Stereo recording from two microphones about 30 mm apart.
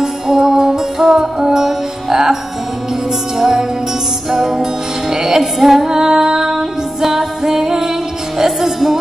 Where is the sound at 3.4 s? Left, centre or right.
Centre.